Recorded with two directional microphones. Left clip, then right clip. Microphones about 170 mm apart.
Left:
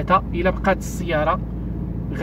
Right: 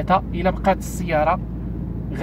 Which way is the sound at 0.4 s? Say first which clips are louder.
Even; 20° right (ahead or behind).